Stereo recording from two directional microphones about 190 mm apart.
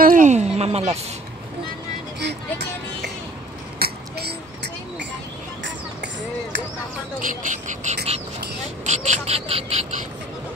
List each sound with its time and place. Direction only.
0.0 s a sound: 45° right (ahead or behind)
3.8 s throat clearing: 60° right (ahead or behind)
7.2 s speech: 45° right (ahead or behind)